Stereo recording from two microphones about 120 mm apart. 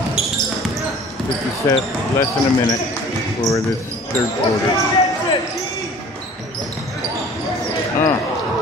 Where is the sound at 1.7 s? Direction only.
30° left (ahead or behind).